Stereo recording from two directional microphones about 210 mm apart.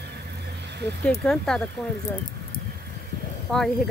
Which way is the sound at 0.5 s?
55° right (ahead or behind).